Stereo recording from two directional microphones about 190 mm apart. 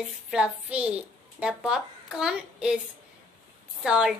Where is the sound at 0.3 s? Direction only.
5° right (ahead or behind).